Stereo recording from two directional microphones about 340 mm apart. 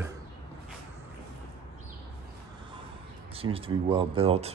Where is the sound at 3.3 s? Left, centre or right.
Centre.